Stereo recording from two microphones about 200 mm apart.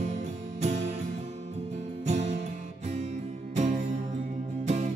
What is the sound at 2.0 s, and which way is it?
Music, 35° right (ahead or behind).